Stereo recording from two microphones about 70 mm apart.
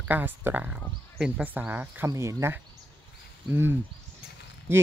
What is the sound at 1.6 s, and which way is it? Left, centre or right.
Speech, right.